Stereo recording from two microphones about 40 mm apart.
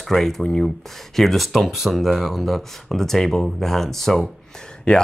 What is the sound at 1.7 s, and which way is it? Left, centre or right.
Speech, centre.